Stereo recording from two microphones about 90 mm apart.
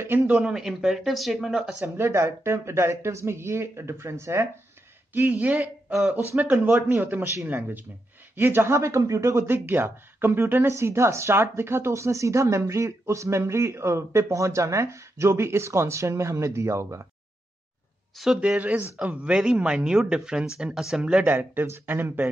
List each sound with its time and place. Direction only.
0.0 s speech: 25° right (ahead or behind)
0.4 s speech: 5° right (ahead or behind)
2.0 s speech: 30° right (ahead or behind)
5.1 s speech: 20° right (ahead or behind)
18.1 s speech: 5° right (ahead or behind); by 22.3 s 20° right (ahead or behind)